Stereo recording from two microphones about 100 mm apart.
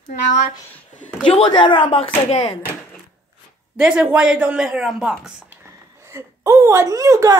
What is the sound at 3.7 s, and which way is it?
Speech, 10° right (ahead or behind).